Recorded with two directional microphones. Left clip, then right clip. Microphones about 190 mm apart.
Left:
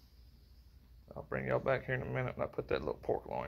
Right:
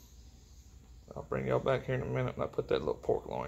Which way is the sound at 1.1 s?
10° left (ahead or behind).